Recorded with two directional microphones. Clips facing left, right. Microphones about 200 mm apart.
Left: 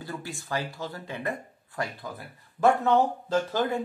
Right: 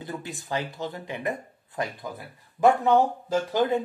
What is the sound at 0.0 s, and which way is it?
Speech, 20° right (ahead or behind).